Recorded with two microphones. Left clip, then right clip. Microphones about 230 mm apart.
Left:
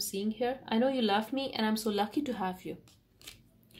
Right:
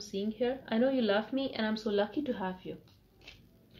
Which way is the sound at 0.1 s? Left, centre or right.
Left.